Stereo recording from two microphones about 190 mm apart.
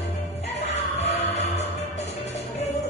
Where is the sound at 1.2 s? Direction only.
35° left (ahead or behind).